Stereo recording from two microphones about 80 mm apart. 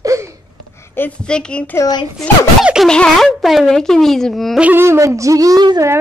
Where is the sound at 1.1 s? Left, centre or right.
Centre.